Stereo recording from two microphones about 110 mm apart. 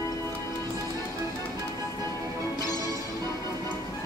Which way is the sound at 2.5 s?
35° left (ahead or behind).